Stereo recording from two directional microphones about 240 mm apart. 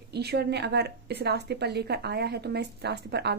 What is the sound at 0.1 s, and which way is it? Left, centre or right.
A woman's voice, right.